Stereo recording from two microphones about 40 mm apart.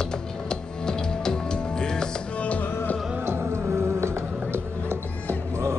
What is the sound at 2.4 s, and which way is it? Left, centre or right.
Music, left.